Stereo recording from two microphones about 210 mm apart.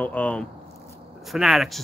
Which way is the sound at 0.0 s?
5° left (ahead or behind).